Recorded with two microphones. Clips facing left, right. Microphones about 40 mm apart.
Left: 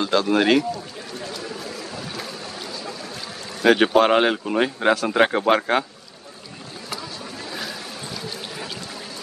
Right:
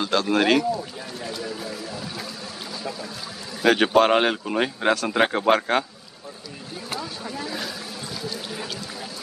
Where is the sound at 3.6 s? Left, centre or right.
Centre.